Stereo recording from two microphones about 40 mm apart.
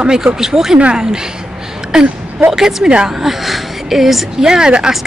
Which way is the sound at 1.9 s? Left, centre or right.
Centre.